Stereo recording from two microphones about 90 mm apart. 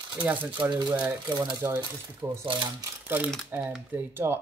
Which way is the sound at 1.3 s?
55° right (ahead or behind).